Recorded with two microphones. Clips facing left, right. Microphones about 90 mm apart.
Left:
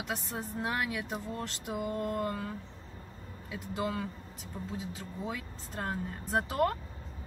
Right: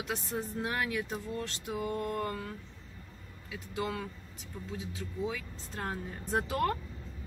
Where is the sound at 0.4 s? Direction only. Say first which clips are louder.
Left 1 dB; 5° left (ahead or behind).